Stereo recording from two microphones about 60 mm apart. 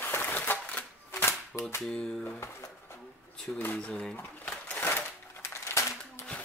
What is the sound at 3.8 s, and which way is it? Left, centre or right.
Speech, centre.